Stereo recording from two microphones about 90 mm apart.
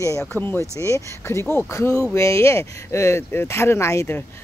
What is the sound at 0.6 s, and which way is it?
Speech, 35° left (ahead or behind).